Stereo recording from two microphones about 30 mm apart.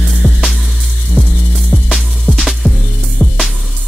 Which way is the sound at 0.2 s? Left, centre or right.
Left.